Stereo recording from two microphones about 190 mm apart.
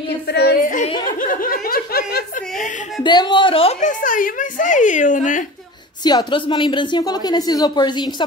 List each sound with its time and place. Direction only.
0.3 s a woman's voice: 60° left (ahead or behind)
1.3 s speech: 50° left (ahead or behind)
3.0 s a woman's voice: 25° left (ahead or behind)
4.0 s speech: 45° left (ahead or behind)
6.0 s a woman's voice: 20° left (ahead or behind)